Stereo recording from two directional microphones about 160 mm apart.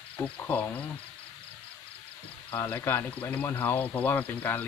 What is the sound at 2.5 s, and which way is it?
Speech, 10° left (ahead or behind).